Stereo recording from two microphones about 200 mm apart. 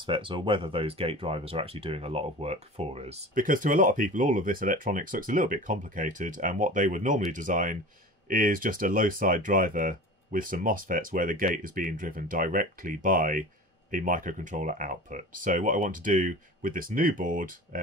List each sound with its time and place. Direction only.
0.0 s speech: 25° right (ahead or behind); by 17.6 s 45° right (ahead or behind)